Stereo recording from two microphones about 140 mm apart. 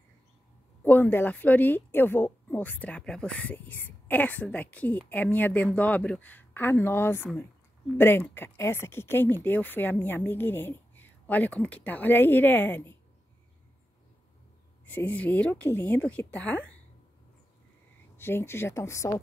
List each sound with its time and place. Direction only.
0.8 s a woman's voice: 15° left (ahead or behind)
14.9 s a woman's voice: 10° left (ahead or behind)
18.1 s a woman's voice: 15° left (ahead or behind)